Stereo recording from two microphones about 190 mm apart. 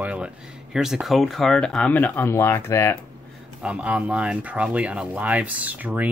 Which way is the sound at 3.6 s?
5° right (ahead or behind).